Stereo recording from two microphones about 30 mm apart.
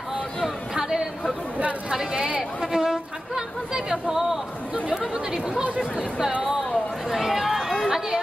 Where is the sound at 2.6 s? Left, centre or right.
Centre.